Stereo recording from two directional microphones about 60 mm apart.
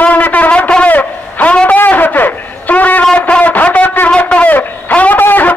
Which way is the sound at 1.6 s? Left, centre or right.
Left.